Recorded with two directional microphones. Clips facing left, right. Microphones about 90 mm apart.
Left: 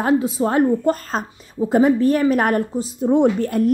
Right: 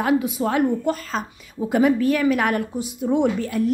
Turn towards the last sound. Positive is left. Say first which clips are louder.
# left 4 dB
turn(degrees=45)  # may be behind; listen again after turning